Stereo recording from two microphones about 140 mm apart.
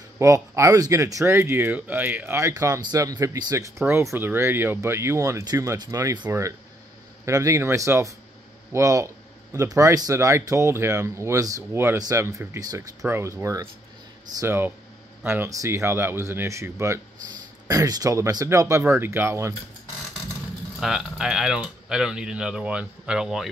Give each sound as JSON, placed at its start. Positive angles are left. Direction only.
{"t": 0.2, "sound": "speech", "side_deg": -20}
{"t": 20.8, "sound": "speech", "side_deg": -5}